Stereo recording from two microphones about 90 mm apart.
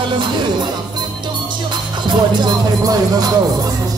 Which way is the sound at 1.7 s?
55° right (ahead or behind).